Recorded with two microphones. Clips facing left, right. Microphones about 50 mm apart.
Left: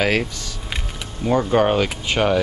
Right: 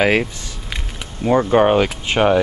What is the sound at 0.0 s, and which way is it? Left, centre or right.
Speech, centre.